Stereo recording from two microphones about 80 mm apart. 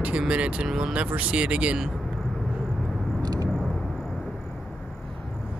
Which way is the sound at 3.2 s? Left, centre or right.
Right.